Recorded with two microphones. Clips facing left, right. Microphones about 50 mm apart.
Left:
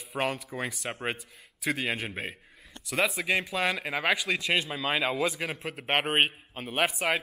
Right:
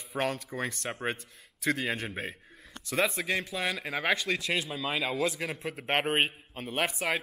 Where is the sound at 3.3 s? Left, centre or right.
Centre.